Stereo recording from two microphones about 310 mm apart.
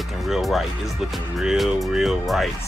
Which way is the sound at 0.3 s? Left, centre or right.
Centre.